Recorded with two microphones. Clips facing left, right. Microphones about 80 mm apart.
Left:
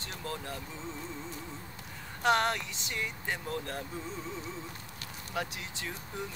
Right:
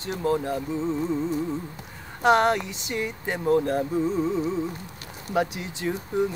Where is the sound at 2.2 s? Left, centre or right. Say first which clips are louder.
Right 8 dB; centre.